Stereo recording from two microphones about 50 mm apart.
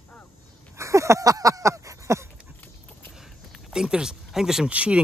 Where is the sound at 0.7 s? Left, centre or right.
Right.